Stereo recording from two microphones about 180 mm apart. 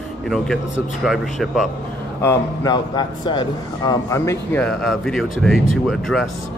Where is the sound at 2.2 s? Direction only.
20° left (ahead or behind).